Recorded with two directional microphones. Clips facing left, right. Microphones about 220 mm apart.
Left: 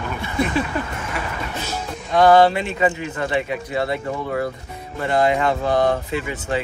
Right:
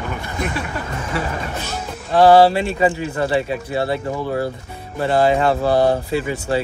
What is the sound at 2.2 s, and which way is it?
Speech, 30° right (ahead or behind).